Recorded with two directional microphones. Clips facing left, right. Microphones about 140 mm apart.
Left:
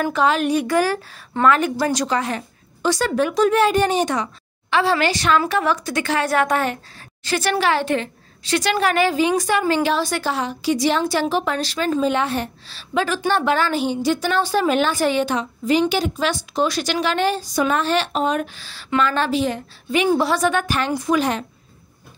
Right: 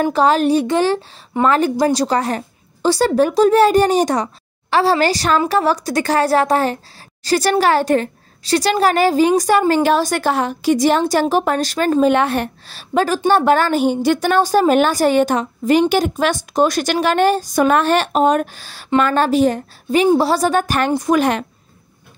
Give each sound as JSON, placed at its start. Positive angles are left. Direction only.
{"t": 0.0, "sound": "speech", "side_deg": -35}
{"t": 2.0, "sound": "a woman's voice", "side_deg": -40}